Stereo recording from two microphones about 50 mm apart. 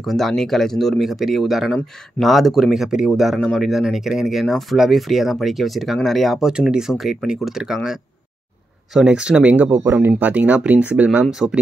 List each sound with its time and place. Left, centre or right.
0.0 s speech: centre
6.4 s speech: centre
9.0 s speech: centre
11.2 s speech: centre